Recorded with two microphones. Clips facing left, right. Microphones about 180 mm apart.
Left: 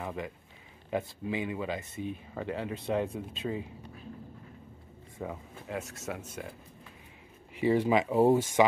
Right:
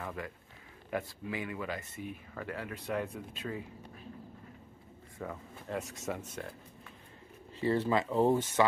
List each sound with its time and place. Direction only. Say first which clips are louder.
0.0 s a sound: left 3 dB; 20° left (ahead or behind)
0.8 s speech: left 4 dB; 20° left (ahead or behind)
5.2 s speech: left 3 dB; 15° left (ahead or behind)
5.7 s speech: even; 5° left (ahead or behind)
7.5 s speech: left 4 dB; 15° left (ahead or behind)